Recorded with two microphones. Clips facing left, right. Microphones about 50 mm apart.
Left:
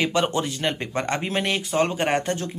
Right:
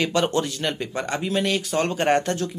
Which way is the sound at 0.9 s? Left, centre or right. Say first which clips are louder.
Even; left.